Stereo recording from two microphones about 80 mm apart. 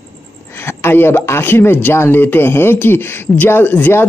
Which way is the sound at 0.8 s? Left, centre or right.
Left.